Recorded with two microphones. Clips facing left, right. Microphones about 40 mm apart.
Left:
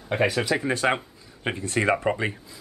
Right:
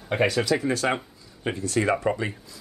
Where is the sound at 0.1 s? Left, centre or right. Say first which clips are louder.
Even; centre.